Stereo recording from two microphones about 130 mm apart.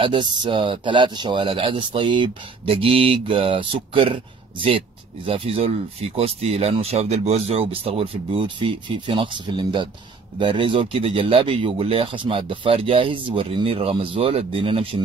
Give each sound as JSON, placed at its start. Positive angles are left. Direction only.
{"t": 0.0, "sound": "speech", "side_deg": -40}